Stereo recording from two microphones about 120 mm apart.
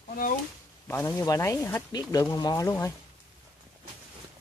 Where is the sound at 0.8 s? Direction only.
20° left (ahead or behind).